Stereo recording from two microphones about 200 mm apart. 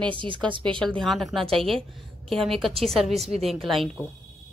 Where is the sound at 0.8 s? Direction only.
5° left (ahead or behind).